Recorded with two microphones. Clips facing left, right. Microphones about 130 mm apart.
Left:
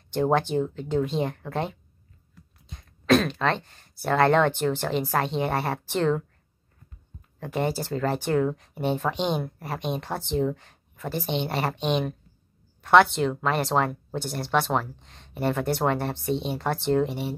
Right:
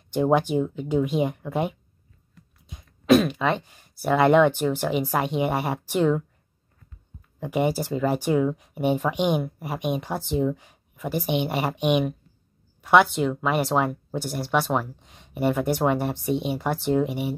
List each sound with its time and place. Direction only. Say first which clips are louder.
0.1 s speech: right 2 dB; 10° right (ahead or behind)
7.3 s speech: right 3 dB; 10° right (ahead or behind)